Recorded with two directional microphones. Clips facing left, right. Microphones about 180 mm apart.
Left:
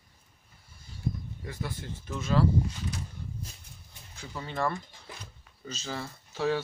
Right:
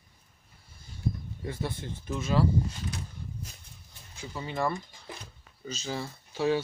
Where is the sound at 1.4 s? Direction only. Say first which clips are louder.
Right 6 dB; 25° right (ahead or behind).